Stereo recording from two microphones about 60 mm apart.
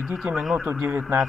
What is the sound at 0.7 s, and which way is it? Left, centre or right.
Speech, right.